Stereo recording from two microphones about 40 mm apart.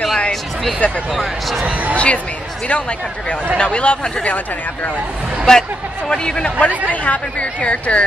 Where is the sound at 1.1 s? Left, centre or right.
Centre.